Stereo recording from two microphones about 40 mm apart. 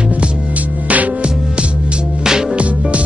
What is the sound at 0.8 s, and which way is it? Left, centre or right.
Music, right.